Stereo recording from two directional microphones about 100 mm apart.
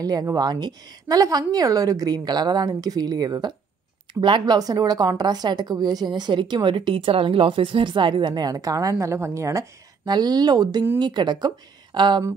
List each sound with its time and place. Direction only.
0.0 s a woman's voice: 35° right (ahead or behind)
10.0 s a woman's voice: 45° right (ahead or behind)